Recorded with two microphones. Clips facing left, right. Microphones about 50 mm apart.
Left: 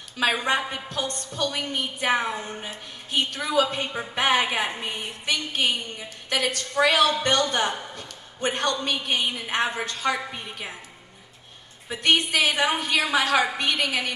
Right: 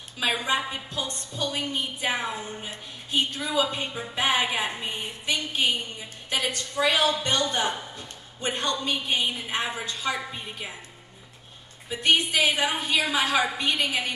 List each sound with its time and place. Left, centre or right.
0.4 s a woman's voice: left
11.9 s a woman's voice: left
12.6 s a woman's voice: left